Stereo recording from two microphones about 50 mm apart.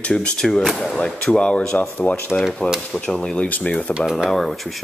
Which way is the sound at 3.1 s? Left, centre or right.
Centre.